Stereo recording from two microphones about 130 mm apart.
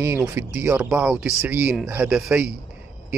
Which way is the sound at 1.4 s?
15° right (ahead or behind).